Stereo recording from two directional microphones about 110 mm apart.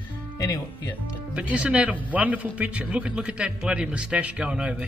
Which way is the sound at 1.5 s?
10° right (ahead or behind).